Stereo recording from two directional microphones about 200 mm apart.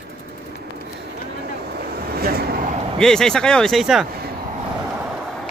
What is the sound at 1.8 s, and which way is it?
Vehicle, 50° right (ahead or behind).